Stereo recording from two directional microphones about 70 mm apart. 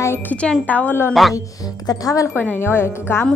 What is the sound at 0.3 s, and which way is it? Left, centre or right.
Speech, centre.